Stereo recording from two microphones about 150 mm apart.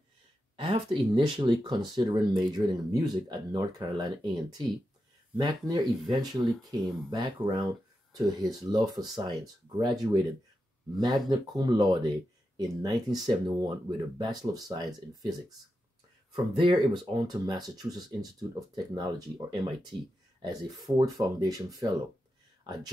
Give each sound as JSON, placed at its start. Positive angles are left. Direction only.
{"t": 0.6, "sound": "speech", "side_deg": -35}
{"t": 8.2, "sound": "speech", "side_deg": -20}
{"t": 16.5, "sound": "speech", "side_deg": -35}